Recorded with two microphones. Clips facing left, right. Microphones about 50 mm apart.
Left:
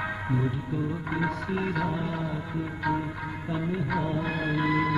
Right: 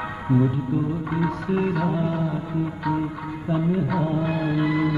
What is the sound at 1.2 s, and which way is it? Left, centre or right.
Music, centre.